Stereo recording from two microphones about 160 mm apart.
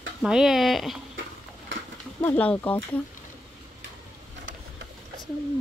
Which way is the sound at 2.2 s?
10° left (ahead or behind).